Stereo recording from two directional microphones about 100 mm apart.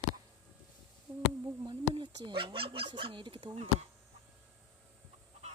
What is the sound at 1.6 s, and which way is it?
Speech, 55° right (ahead or behind).